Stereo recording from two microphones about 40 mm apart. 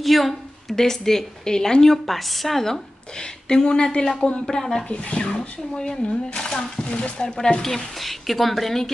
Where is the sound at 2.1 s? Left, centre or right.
Centre.